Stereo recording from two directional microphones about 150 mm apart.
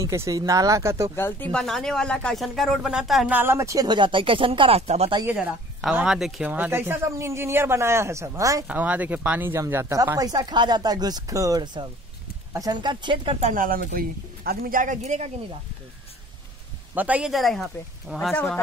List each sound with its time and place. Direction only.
0.0 s speech: 20° right (ahead or behind)
1.1 s speech: 15° left (ahead or behind); by 3.3 s centre (ahead or behind)
3.3 s speech: 15° right (ahead or behind); by 5.1 s 45° right (ahead or behind)
5.2 s a woman's voice: 5° right (ahead or behind); by 8.6 s 20° right (ahead or behind)
8.6 s speech: 10° right (ahead or behind); by 13.4 s 35° right (ahead or behind)
13.4 s speech: 60° right (ahead or behind)
16.9 s speech: 10° right (ahead or behind)